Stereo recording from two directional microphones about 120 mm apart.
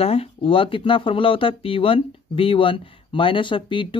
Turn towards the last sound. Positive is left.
turn(degrees=45)  # may be behind; listen again after turning